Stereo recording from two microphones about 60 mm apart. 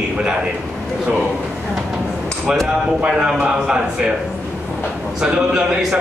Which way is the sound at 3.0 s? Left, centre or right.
Centre.